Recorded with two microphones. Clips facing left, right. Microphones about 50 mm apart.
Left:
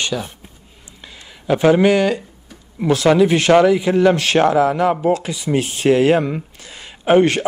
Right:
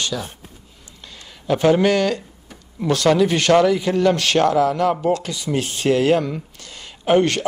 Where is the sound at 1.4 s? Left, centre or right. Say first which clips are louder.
Left 3 dB; centre.